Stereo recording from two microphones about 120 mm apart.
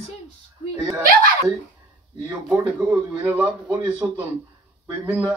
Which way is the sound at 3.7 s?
10° right (ahead or behind).